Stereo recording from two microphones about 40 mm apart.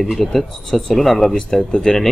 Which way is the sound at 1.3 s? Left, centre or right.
Left.